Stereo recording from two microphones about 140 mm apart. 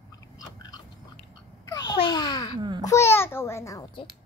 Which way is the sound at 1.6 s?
25° left (ahead or behind).